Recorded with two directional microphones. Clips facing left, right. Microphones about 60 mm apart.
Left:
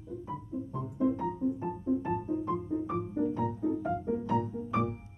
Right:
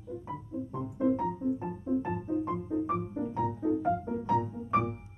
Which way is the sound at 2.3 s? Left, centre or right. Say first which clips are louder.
Even; right.